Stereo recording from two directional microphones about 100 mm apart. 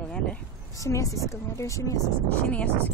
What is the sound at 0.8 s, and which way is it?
Speech, 30° left (ahead or behind).